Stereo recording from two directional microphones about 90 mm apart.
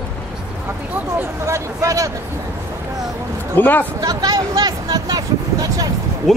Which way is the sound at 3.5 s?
20° left (ahead or behind).